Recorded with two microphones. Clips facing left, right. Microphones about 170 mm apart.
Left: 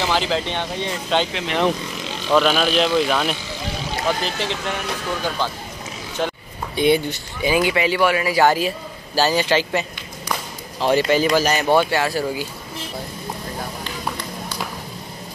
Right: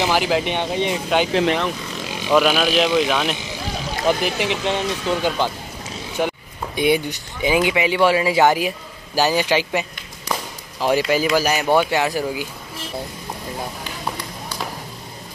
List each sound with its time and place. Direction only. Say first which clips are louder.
0.0 s a man's voice: right 2 dB; 10° right (ahead or behind)
4.2 s a man's voice: right 3 dB; 15° right (ahead or behind)